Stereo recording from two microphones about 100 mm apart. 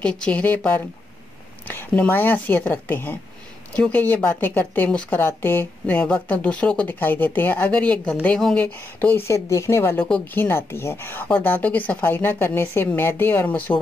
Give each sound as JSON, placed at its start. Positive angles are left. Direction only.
{"t": 0.0, "sound": "a woman's voice", "side_deg": 10}